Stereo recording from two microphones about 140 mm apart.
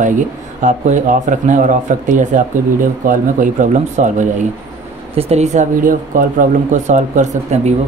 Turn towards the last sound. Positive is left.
turn(degrees=-55)  # may be behind; listen again after turning